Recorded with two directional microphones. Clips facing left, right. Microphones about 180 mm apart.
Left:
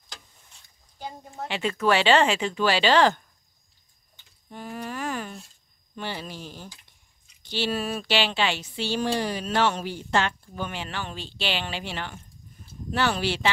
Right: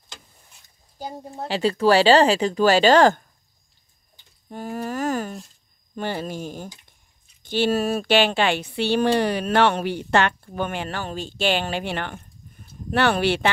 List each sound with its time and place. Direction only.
0.9 s speech: 35° right (ahead or behind)
4.5 s speech: 40° right (ahead or behind); by 13.5 s 60° right (ahead or behind)